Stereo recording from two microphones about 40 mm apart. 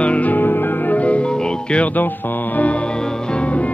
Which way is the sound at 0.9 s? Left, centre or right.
Left.